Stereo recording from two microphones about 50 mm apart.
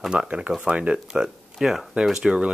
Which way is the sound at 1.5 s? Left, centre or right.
Centre.